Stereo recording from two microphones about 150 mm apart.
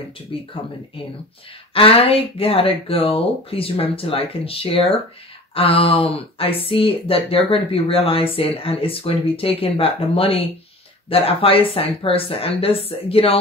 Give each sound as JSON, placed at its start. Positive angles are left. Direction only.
{"t": 1.7, "sound": "speech", "side_deg": 40}